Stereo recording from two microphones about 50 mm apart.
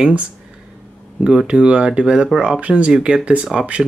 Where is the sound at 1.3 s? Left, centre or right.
Centre.